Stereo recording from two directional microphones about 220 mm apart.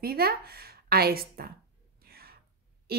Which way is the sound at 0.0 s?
45° right (ahead or behind).